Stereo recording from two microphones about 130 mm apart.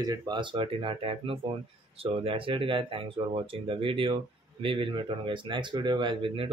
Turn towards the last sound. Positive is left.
turn(degrees=-40)  # may be behind; listen again after turning